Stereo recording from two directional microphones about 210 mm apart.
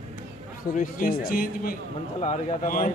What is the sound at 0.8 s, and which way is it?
A man's voice, 45° left (ahead or behind).